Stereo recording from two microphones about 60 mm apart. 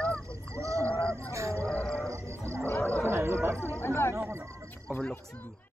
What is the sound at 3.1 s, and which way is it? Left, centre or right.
Music, right.